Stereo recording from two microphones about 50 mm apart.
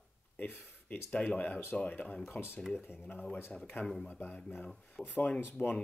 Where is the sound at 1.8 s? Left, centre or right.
Left.